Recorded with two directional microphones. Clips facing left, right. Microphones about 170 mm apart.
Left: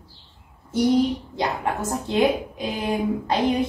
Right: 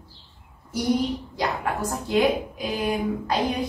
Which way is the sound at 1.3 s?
25° left (ahead or behind).